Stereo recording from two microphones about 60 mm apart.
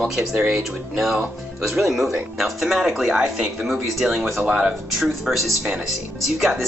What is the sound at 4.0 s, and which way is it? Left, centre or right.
Speech, centre.